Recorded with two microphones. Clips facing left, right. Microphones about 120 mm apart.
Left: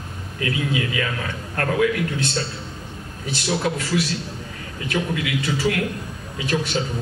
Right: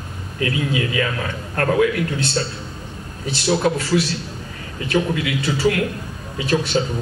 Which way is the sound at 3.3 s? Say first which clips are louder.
Right 5 dB; 35° right (ahead or behind).